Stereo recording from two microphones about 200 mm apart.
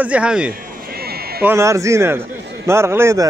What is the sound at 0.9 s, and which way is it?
Sheep, 50° right (ahead or behind).